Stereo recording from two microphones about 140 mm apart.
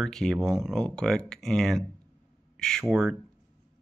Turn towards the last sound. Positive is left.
turn(degrees=0)  # may be behind; listen again after turning